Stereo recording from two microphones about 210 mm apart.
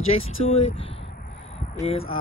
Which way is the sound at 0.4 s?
70° left (ahead or behind).